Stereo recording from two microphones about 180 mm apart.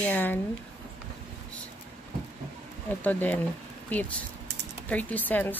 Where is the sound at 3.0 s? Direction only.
10° left (ahead or behind).